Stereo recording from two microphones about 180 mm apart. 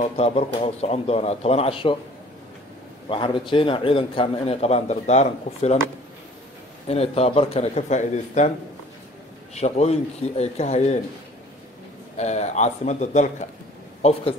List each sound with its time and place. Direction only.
0.0 s a man's voice: 35° left (ahead or behind)
3.1 s a man's voice: 30° left (ahead or behind)
6.9 s a man's voice: 35° left (ahead or behind)
9.5 s a man's voice: 35° left (ahead or behind)
12.2 s a man's voice: 40° left (ahead or behind)